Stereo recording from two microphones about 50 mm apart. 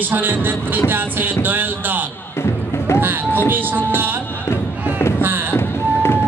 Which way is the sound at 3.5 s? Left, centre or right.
Right.